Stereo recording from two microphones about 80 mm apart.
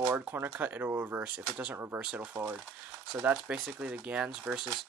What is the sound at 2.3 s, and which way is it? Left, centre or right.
Speech, right.